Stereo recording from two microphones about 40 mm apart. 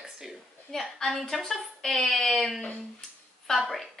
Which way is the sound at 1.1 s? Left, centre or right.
Centre.